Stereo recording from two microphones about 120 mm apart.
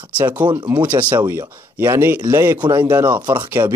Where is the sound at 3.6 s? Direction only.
40° right (ahead or behind).